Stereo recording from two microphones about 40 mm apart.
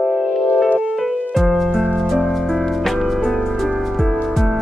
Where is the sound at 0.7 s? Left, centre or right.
Right.